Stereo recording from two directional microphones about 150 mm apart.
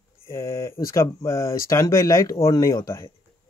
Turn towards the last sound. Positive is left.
turn(degrees=20)  # may be behind; listen again after turning